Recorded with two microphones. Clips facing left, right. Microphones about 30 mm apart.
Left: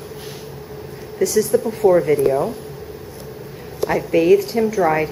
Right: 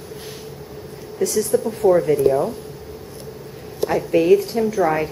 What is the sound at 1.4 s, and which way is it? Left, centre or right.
A woman's voice, centre.